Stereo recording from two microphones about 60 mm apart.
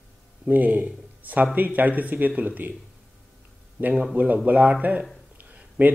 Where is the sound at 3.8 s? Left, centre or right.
Right.